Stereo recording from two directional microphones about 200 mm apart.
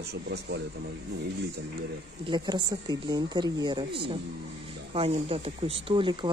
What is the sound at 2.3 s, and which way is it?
Speech, 20° right (ahead or behind).